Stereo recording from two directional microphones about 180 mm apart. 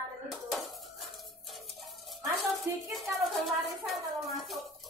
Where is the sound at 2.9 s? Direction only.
Centre (ahead or behind).